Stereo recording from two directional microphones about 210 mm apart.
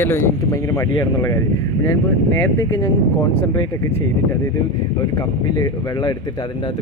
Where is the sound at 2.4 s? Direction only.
10° left (ahead or behind).